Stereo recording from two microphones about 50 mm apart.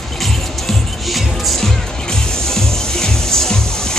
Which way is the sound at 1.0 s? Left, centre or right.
Centre.